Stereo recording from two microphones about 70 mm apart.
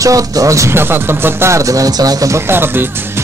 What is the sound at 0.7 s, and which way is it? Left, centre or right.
Speech, right.